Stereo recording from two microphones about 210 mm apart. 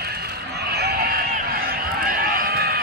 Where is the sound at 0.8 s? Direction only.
45° right (ahead or behind).